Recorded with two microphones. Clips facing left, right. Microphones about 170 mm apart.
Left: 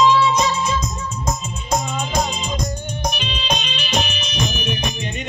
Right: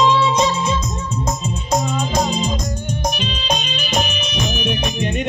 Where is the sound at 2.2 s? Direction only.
35° right (ahead or behind).